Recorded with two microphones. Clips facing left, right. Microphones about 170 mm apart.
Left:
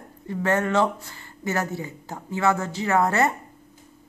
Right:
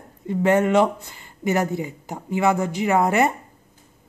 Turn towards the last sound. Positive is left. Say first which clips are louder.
# right 2 dB
turn(degrees=-15)  # may be behind; listen again after turning